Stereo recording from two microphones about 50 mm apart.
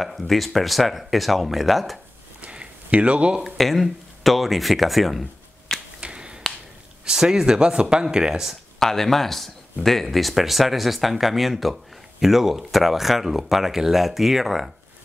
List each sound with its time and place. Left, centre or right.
0.0 s speech: centre
2.4 s a sound: right
3.4 s speech: centre
5.9 s finger snapping: right
7.1 s speech: centre
8.7 s speech: centre